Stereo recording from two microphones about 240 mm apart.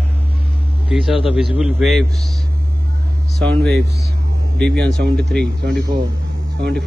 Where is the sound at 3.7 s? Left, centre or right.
Right.